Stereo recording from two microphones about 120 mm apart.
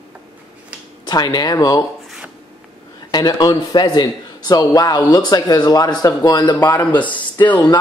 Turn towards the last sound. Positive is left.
turn(degrees=15)  # may be behind; listen again after turning